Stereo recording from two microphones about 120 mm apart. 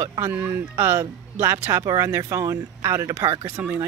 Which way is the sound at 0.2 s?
20° right (ahead or behind).